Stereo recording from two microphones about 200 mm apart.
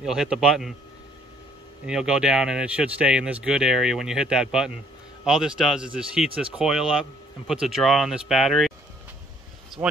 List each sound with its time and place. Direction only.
0.0 s speech: centre (ahead or behind)
1.9 s speech: 5° right (ahead or behind)
9.8 s speech: 25° right (ahead or behind)